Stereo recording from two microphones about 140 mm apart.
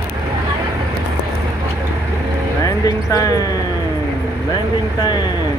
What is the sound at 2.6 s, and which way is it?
Speech, 25° left (ahead or behind).